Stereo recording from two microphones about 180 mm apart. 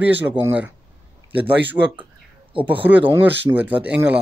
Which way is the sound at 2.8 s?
10° right (ahead or behind).